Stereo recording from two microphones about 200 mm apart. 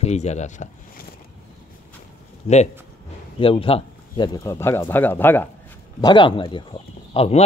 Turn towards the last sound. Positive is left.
turn(degrees=30)  # may be behind; listen again after turning